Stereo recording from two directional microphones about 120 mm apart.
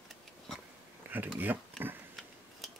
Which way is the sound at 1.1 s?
15° right (ahead or behind).